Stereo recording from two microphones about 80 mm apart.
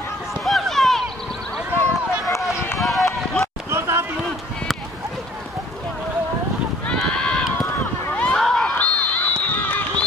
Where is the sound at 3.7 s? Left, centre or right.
Right.